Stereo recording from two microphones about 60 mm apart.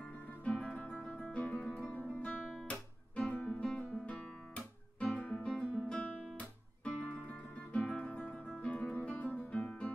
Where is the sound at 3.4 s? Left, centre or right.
Centre.